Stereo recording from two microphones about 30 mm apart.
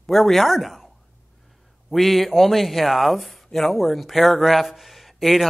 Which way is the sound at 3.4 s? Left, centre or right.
Centre.